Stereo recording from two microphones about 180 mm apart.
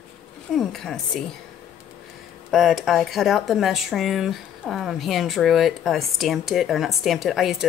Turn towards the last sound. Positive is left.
turn(degrees=0)  # may be behind; listen again after turning